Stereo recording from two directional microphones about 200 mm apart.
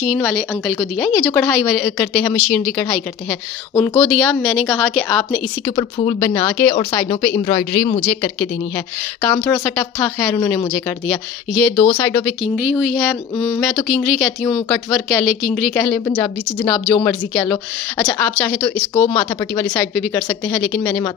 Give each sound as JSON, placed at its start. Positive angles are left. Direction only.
{"t": 0.0, "sound": "speech", "side_deg": 0}
{"t": 5.7, "sound": "a woman's voice", "side_deg": 25}
{"t": 11.7, "sound": "a woman's voice", "side_deg": 30}
{"t": 12.0, "sound": "speech", "side_deg": 15}
{"t": 12.4, "sound": "speech", "side_deg": -5}